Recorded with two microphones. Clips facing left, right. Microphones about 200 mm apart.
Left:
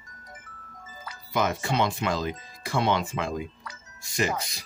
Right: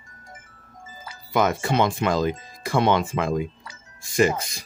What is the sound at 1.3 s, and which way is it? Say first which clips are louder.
Speech: right 5 dB; 50° right (ahead or behind).